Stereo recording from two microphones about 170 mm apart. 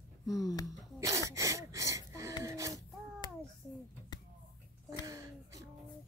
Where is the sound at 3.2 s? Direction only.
25° left (ahead or behind).